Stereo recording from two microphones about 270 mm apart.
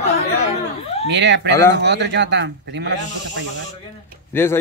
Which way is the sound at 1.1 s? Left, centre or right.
Right.